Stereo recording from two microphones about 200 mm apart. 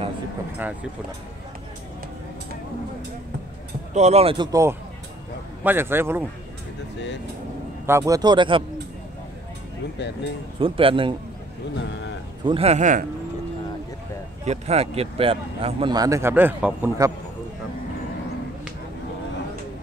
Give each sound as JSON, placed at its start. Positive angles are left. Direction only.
{"t": 3.9, "sound": "speech", "side_deg": -35}
{"t": 7.8, "sound": "speech", "side_deg": -15}
{"t": 10.6, "sound": "speech", "side_deg": -25}
{"t": 11.7, "sound": "speech", "side_deg": 60}
{"t": 12.4, "sound": "a man's voice", "side_deg": -30}
{"t": 14.4, "sound": "speech", "side_deg": -35}